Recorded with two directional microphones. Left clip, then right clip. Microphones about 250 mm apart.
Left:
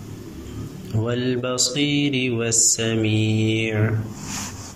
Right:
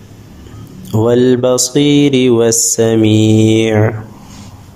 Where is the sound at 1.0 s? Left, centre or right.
Right.